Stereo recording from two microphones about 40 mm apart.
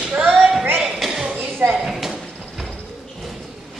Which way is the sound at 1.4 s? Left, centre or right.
Right.